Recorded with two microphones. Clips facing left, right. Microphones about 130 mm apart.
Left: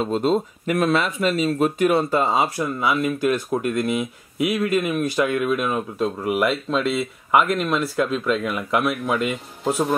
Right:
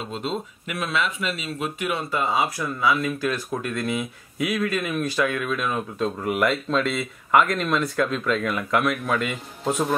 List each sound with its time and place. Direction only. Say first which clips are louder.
0.0 s speech: left 9 dB; 45° left (ahead or behind)
2.6 s speech: left 2 dB; 20° left (ahead or behind); by 9.9 s 5° left (ahead or behind)